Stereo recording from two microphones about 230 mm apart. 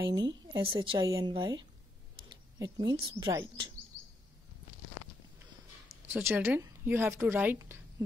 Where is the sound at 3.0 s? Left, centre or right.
Centre.